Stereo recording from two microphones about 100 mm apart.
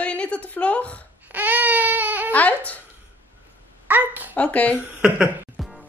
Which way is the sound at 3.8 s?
20° right (ahead or behind).